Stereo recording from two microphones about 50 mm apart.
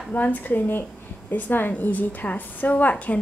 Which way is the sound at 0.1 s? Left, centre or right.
Left.